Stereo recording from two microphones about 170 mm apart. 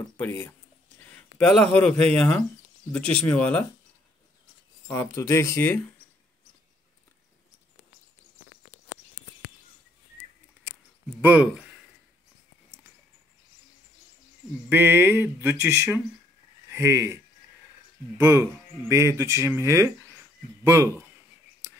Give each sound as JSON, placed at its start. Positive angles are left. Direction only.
{"t": 0.2, "sound": "speech", "side_deg": 10}
{"t": 4.8, "sound": "speech", "side_deg": 15}
{"t": 11.1, "sound": "speech", "side_deg": -10}
{"t": 14.7, "sound": "speech", "side_deg": -15}